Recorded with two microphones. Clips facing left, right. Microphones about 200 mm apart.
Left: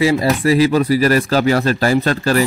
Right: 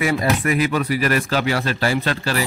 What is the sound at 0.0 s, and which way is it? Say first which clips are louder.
Speech: left 5 dB; 30° left (ahead or behind).